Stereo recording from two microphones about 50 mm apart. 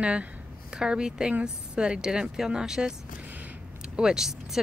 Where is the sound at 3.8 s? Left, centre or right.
Centre.